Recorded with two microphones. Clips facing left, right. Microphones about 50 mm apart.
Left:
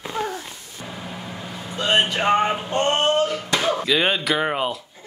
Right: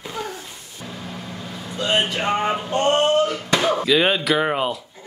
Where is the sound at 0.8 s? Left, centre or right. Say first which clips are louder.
Even; centre.